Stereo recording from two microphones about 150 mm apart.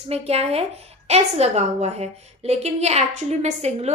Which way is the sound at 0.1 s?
45° right (ahead or behind).